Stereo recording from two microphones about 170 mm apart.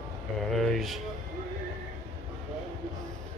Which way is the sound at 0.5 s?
Centre (ahead or behind).